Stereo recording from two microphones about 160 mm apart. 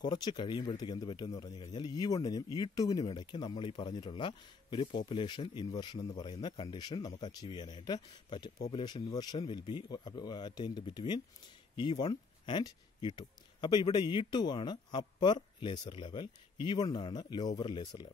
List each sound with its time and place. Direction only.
0.0 s speech: 25° left (ahead or behind)